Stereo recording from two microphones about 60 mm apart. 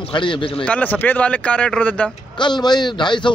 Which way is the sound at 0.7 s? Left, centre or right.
Left.